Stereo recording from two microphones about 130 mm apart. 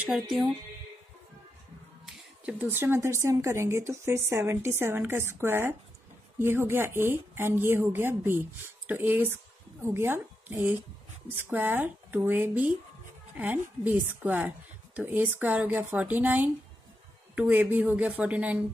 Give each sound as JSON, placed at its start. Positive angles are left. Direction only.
{"t": 0.0, "sound": "speech", "side_deg": -5}
{"t": 2.0, "sound": "a woman's voice", "side_deg": -10}